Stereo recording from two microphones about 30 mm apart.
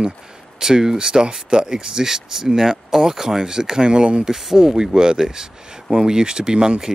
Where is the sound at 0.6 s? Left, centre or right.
Centre.